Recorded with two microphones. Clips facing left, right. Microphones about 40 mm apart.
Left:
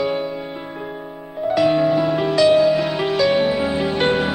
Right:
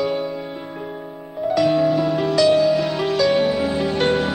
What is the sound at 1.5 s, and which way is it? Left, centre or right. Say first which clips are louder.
Music: left 1 dB; centre.